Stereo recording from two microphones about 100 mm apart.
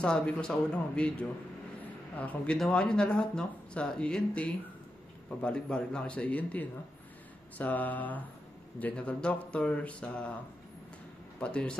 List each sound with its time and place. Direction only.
0.0 s speech: 10° left (ahead or behind)
11.3 s speech: 10° left (ahead or behind)